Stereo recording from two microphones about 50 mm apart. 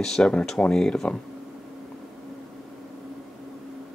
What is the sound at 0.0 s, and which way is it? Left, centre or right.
Speech, centre.